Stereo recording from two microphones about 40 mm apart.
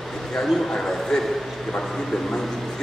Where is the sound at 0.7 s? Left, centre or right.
Centre.